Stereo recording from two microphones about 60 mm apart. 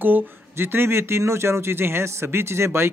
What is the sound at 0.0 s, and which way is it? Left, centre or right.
Speech, right.